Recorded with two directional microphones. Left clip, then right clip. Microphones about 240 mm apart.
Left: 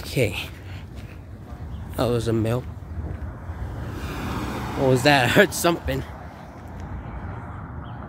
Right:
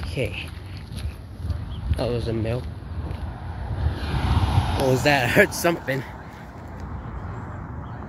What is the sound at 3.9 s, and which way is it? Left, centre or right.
Vehicle, left.